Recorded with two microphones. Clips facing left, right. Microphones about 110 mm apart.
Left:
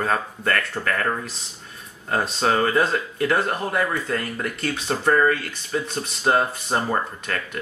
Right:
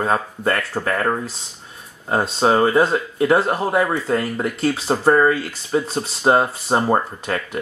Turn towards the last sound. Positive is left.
turn(degrees=-25)  # may be behind; listen again after turning